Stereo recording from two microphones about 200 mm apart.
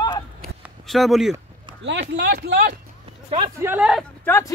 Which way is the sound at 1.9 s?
60° right (ahead or behind).